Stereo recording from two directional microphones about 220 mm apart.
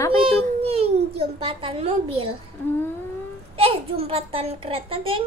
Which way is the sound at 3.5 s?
25° right (ahead or behind).